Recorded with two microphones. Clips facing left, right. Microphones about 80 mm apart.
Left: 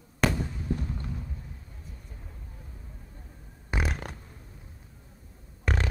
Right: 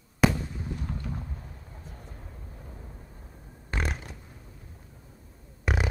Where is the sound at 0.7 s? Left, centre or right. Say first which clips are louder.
Left 7 dB; left.